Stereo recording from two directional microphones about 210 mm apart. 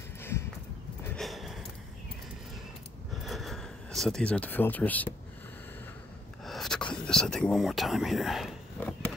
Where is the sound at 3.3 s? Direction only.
Centre (ahead or behind).